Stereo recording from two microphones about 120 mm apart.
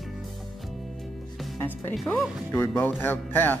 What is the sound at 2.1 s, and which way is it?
Speech, 15° left (ahead or behind).